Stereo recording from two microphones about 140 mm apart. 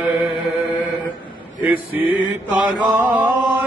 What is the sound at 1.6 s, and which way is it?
Male singing, 10° right (ahead or behind).